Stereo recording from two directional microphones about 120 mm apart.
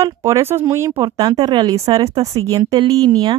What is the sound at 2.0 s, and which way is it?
Speech, 55° right (ahead or behind).